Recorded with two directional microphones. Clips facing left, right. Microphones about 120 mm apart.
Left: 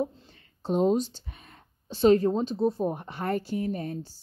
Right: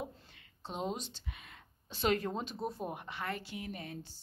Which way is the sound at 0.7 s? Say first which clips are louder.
Left 15 dB; 40° left (ahead or behind).